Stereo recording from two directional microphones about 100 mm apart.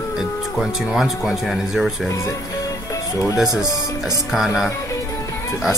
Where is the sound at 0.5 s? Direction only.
Centre (ahead or behind).